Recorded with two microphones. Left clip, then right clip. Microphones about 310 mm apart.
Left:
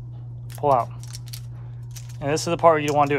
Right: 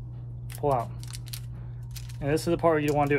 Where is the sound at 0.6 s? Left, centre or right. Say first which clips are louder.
Left 7 dB; left.